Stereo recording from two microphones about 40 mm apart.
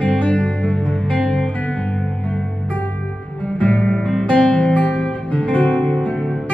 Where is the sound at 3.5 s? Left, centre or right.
Left.